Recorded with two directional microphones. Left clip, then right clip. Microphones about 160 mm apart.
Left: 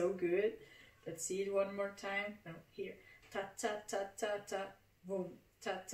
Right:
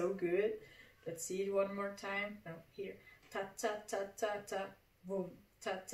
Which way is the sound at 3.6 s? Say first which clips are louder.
Right 1 dB; 15° left (ahead or behind).